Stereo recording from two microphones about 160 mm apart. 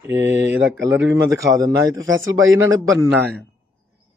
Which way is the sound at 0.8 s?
20° right (ahead or behind).